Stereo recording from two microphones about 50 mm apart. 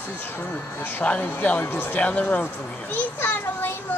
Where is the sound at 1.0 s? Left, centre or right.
Left.